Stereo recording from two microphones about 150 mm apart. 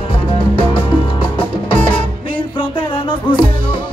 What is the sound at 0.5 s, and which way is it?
Music, 35° left (ahead or behind).